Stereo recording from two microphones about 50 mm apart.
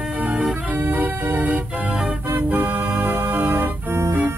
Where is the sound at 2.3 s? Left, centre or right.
Right.